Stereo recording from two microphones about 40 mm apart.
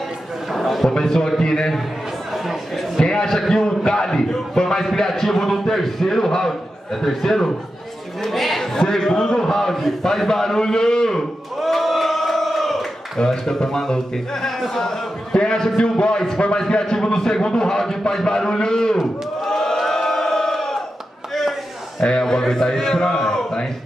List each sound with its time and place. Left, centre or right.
0.5 s a sound: centre
0.8 s a man's voice: centre
2.3 s speech: centre
3.0 s a man's voice: centre
8.7 s a man's voice: centre
11.6 s crowd: centre
13.2 s a man's voice: centre
18.9 s a sound: centre
22.0 s a man's voice: centre